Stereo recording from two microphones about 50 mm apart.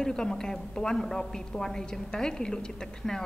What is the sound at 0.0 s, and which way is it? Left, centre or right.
A woman's voice, centre.